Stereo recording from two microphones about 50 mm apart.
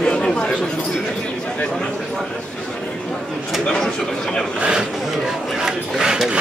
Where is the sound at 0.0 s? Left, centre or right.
Left.